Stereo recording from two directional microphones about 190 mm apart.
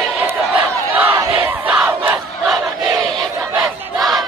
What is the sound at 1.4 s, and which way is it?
Crowd, 10° right (ahead or behind).